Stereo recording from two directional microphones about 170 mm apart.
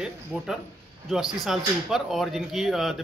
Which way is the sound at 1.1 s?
Centre (ahead or behind).